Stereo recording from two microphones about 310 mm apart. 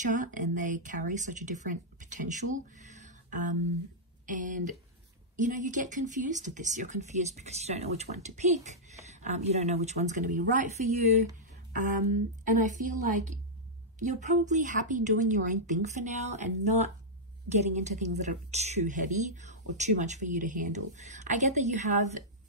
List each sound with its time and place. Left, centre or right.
0.0 s speech: right
2.9 s a sound: right
4.3 s speech: right
12.5 s speech: right